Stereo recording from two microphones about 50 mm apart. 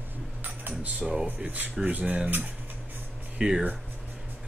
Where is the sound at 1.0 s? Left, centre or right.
Centre.